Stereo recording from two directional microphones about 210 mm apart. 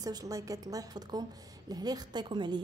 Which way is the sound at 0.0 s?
15° right (ahead or behind).